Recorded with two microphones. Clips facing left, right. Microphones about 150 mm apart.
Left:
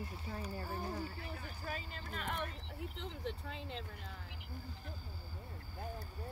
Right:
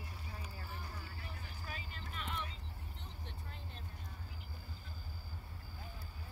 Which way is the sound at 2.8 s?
90° left.